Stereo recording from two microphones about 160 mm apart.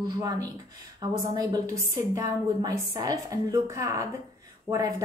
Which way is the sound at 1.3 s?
25° right (ahead or behind).